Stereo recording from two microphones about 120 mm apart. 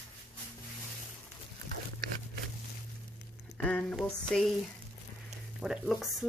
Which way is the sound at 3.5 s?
10° left (ahead or behind).